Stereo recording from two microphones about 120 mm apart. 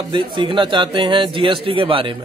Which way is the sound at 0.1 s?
40° right (ahead or behind).